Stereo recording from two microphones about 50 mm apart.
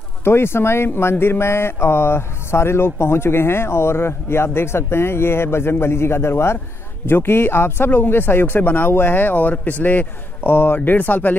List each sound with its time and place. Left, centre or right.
0.2 s speech: left